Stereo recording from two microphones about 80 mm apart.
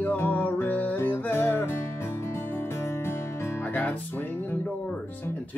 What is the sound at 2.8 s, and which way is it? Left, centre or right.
Music, left.